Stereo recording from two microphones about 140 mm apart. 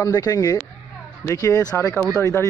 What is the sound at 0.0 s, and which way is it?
Speech, 25° left (ahead or behind).